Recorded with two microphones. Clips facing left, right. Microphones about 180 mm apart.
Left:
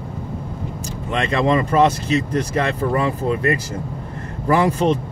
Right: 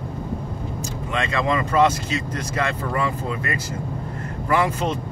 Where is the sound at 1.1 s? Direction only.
30° left (ahead or behind).